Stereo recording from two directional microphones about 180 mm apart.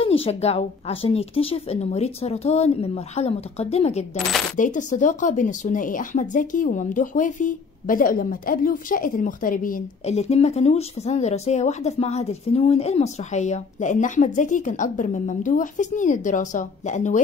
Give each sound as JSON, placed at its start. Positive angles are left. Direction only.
{"t": 0.0, "sound": "a woman's voice", "side_deg": 30}